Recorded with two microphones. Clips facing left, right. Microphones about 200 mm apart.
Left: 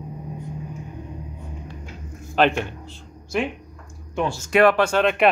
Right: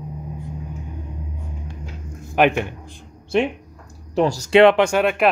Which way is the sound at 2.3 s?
15° right (ahead or behind).